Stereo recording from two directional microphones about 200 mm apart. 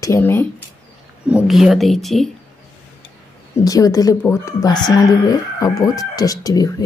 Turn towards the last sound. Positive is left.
turn(degrees=20)  # may be behind; listen again after turning